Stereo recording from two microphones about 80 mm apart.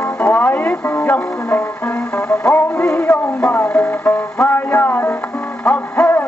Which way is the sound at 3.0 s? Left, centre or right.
Left.